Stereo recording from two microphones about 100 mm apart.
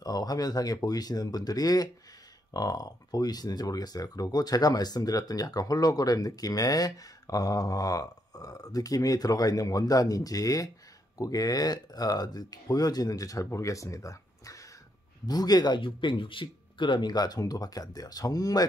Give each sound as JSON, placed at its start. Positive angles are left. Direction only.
{"t": 0.0, "sound": "speech", "side_deg": 40}